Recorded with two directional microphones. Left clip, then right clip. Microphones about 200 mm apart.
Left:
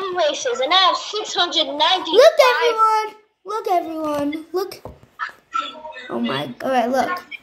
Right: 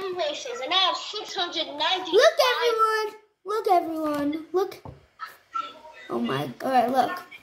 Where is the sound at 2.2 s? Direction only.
20° left (ahead or behind).